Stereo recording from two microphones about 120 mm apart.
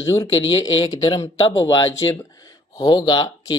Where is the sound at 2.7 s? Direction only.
30° left (ahead or behind).